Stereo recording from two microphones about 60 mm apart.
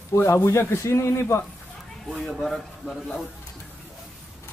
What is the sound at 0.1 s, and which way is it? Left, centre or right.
A man's voice, left.